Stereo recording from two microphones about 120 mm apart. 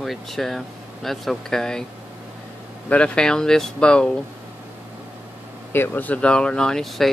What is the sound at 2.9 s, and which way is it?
Speech, 5° left (ahead or behind).